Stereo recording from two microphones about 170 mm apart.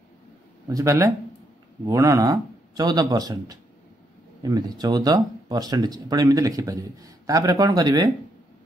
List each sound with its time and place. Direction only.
0.7 s speech: 20° right (ahead or behind)